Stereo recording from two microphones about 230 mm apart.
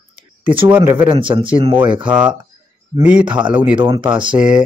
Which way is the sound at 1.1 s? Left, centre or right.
Right.